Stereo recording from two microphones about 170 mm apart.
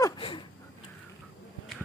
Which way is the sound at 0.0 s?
30° left (ahead or behind).